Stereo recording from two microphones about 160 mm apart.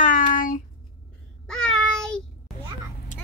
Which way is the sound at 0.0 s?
55° left (ahead or behind).